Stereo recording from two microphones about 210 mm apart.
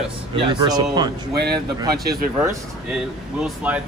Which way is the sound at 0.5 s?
20° right (ahead or behind).